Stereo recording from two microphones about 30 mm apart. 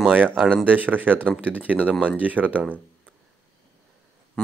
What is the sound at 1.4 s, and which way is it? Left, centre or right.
Speech, right.